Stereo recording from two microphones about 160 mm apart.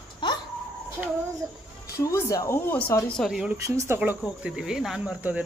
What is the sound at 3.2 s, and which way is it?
Speech, 5° right (ahead or behind).